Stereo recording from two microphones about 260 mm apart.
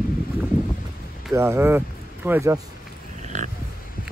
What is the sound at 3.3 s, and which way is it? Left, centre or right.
Pig, right.